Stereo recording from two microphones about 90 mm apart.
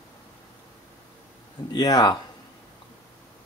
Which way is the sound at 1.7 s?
45° left (ahead or behind).